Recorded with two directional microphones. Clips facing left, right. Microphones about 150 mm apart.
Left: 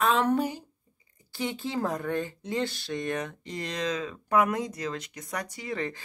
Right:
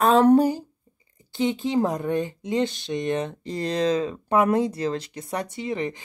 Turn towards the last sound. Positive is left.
turn(degrees=-20)  # may be behind; listen again after turning